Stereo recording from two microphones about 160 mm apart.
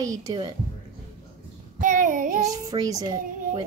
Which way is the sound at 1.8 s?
55° right (ahead or behind).